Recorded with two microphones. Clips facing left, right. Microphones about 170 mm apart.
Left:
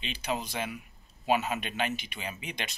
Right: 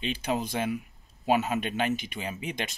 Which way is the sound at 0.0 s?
50° right (ahead or behind).